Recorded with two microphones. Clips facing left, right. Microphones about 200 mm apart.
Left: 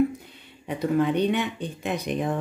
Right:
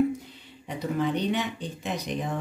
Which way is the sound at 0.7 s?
55° left (ahead or behind).